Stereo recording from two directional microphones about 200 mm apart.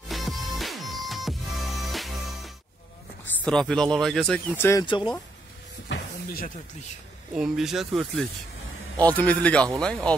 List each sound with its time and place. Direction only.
0.1 s music: centre (ahead or behind)
3.4 s speech: 5° left (ahead or behind)
4.6 s a man's voice: 10° left (ahead or behind)
4.8 s speech: 25° left (ahead or behind)
5.9 s a sound: 50° left (ahead or behind)
7.3 s a man's voice: centre (ahead or behind)